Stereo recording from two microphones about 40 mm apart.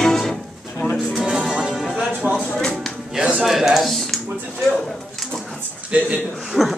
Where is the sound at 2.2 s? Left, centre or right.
Right.